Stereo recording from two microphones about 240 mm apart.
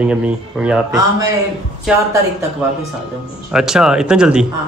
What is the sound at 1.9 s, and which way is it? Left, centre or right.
Speech, centre.